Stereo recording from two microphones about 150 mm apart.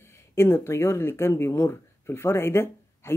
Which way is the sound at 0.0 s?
15° left (ahead or behind).